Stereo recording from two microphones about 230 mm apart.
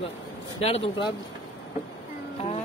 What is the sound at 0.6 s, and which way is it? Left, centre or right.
Speech, left.